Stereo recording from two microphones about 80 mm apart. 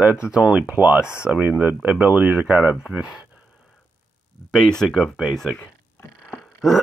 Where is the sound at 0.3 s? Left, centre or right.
Centre.